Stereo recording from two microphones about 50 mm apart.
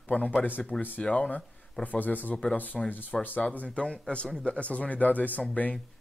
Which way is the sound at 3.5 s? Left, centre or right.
Left.